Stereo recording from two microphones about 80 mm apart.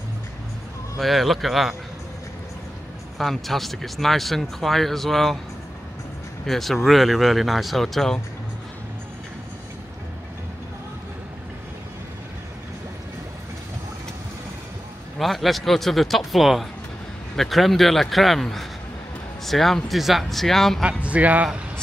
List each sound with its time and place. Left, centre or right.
0.9 s speech: centre
3.2 s speech: centre
6.4 s speech: centre
15.1 s speech: centre
20.8 s speech: centre